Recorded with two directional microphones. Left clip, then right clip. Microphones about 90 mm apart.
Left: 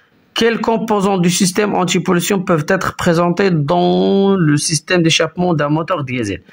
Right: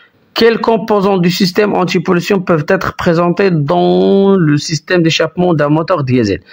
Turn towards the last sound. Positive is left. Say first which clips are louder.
# right 6 dB
turn(degrees=-50)  # may be behind; listen again after turning